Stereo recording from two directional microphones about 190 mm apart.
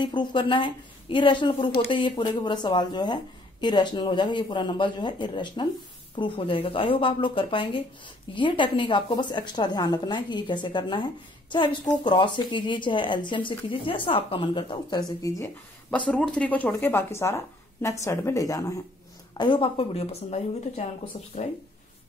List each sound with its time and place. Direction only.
0.0 s a woman's voice: 25° left (ahead or behind)